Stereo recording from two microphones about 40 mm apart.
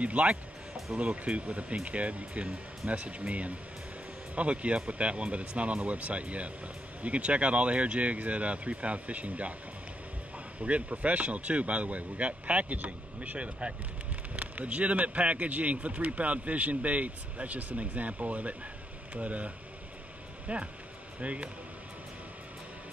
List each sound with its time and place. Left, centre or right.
0.0 s speech: right
10.6 s speech: right